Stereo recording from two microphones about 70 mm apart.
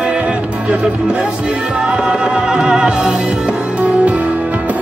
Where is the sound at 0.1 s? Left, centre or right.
Centre.